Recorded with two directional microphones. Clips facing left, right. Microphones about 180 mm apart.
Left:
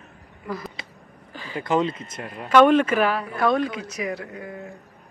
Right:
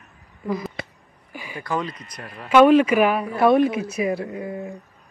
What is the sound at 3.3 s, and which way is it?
Speech, 25° right (ahead or behind).